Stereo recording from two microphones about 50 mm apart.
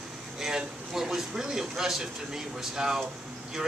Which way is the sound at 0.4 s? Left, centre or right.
Centre.